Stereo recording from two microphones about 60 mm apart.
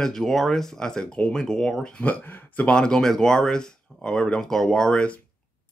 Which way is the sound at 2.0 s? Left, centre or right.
Left.